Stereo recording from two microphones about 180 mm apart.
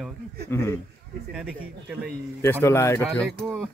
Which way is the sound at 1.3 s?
5° right (ahead or behind).